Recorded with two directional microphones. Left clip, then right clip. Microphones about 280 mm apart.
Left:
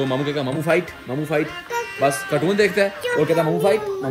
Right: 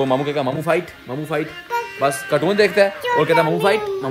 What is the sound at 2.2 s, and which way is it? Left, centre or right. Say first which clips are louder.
Speech: right 2 dB; right.